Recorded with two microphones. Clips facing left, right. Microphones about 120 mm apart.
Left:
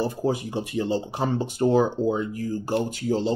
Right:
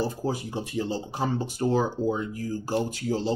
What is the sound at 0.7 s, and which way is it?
Speech, 60° left (ahead or behind).